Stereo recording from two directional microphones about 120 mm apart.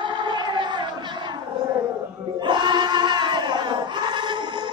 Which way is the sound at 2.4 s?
40° right (ahead or behind).